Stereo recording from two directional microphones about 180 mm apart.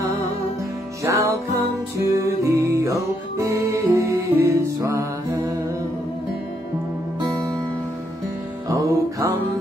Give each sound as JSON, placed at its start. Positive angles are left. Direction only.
{"t": 1.0, "sound": "music", "side_deg": -15}
{"t": 8.6, "sound": "music", "side_deg": -15}